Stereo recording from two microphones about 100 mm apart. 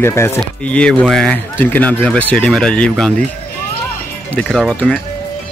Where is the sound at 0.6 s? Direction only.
10° left (ahead or behind).